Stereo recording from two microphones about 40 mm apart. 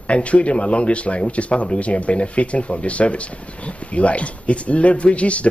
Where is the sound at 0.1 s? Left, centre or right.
Left.